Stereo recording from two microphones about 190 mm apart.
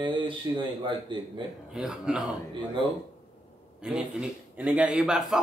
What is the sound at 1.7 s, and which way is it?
Speech, 5° right (ahead or behind).